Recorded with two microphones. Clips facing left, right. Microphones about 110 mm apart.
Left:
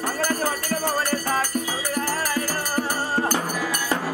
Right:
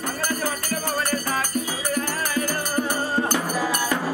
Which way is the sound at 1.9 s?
35° left (ahead or behind).